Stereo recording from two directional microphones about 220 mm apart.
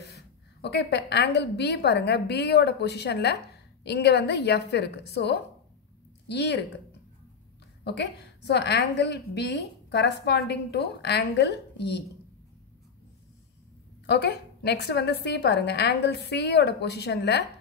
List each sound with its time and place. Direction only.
0.1 s a woman's voice: 50° left (ahead or behind)
14.0 s a woman's voice: 50° left (ahead or behind)